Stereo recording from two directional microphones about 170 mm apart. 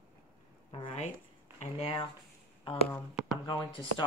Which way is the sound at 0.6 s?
30° left (ahead or behind).